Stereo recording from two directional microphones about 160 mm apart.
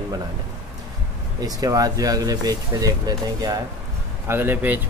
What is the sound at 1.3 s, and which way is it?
Speech, 25° right (ahead or behind).